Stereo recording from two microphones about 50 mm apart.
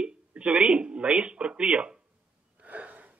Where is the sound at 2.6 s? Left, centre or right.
Right.